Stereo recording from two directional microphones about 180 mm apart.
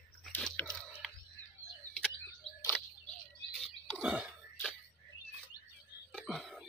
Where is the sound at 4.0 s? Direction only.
10° right (ahead or behind).